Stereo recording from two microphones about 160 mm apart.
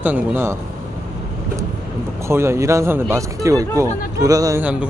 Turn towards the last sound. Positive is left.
turn(degrees=-5)  # may be behind; listen again after turning